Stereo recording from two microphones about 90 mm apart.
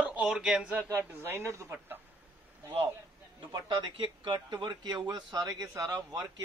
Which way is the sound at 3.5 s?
55° right (ahead or behind).